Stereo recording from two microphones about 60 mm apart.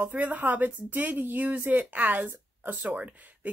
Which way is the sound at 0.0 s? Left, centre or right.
Right.